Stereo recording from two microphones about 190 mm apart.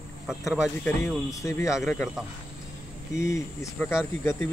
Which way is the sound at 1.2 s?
15° left (ahead or behind).